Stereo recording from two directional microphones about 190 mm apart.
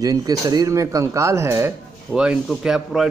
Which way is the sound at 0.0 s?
20° right (ahead or behind).